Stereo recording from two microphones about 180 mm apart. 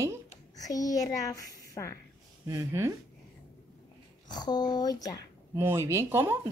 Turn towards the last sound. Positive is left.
turn(degrees=-15)  # may be behind; listen again after turning